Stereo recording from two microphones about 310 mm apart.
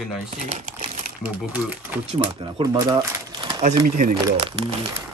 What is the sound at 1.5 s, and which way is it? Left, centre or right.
Speech, centre.